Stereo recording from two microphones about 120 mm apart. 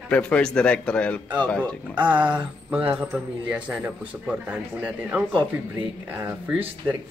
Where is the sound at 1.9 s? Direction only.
10° right (ahead or behind).